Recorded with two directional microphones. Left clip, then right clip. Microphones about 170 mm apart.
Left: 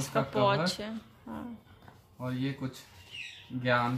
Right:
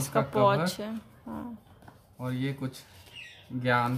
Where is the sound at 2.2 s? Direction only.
20° right (ahead or behind).